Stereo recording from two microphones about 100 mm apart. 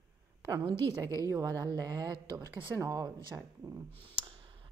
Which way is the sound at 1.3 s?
35° right (ahead or behind).